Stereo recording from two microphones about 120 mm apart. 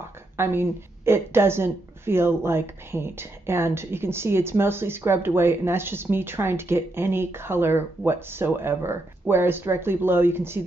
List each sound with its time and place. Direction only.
0.4 s a woman's voice: 20° right (ahead or behind)